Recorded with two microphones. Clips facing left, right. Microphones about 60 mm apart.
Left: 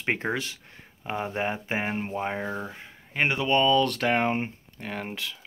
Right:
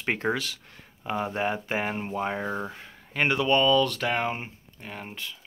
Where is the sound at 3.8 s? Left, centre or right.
Left.